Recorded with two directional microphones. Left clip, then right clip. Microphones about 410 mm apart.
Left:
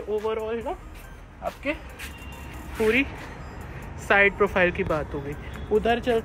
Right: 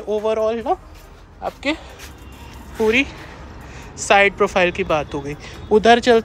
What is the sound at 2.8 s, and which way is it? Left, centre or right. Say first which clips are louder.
Speech: right 5 dB; centre.